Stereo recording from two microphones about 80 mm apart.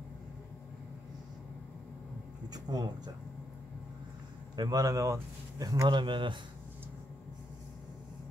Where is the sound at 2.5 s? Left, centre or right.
Right.